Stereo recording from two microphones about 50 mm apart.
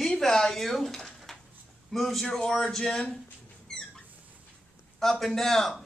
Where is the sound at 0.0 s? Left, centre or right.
Centre.